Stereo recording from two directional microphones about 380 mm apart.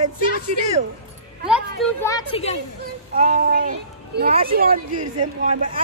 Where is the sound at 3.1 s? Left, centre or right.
Centre.